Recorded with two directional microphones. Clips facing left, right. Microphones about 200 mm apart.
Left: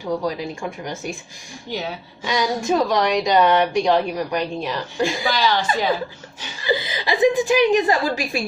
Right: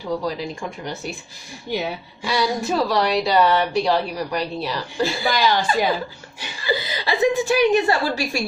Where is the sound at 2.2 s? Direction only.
15° left (ahead or behind).